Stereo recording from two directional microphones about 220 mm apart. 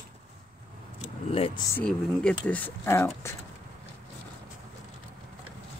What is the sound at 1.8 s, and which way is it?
Speech, 5° left (ahead or behind).